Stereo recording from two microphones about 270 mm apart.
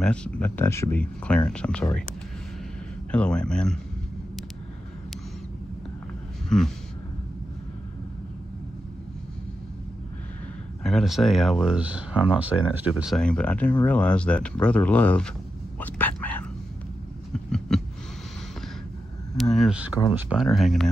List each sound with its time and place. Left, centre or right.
0.0 s speech: centre
3.1 s speech: centre
6.5 s speech: centre
10.8 s speech: centre
15.8 s a sound: centre
19.3 s a sound: centre
20.2 s speech: centre